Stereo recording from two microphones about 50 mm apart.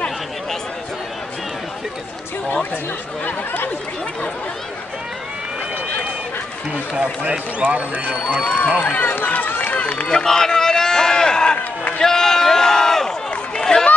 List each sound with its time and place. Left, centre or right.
3.3 s speech: left
6.9 s speech: centre
7.6 s speech: right
8.5 s speech: left
10.0 s run: centre
12.0 s a sound: centre
13.6 s run: centre